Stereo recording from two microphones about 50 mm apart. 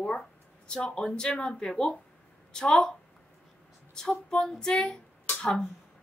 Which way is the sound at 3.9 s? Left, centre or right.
Centre.